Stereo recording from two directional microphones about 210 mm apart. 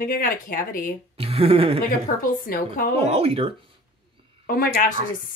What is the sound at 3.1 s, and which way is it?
Speech, 25° right (ahead or behind).